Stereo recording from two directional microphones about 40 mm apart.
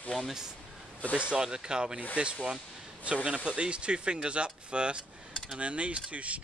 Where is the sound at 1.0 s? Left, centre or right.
Left.